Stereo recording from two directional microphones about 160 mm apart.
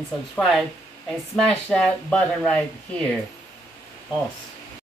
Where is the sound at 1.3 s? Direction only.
5° left (ahead or behind).